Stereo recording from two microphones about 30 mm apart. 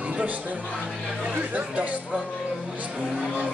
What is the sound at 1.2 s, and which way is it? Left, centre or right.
Speech, right.